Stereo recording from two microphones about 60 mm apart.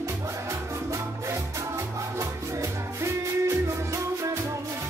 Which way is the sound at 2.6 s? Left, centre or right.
Right.